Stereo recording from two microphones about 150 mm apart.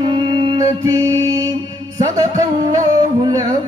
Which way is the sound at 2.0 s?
25° right (ahead or behind).